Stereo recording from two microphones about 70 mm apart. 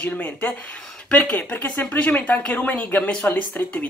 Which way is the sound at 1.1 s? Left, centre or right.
Centre.